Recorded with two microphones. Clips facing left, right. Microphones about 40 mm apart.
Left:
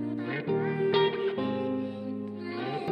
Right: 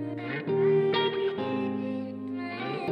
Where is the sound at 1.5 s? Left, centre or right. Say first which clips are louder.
Right 1 dB; right.